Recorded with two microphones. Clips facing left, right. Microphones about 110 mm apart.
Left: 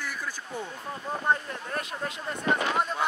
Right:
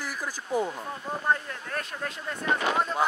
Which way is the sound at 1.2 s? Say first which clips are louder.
Even; 10° left (ahead or behind).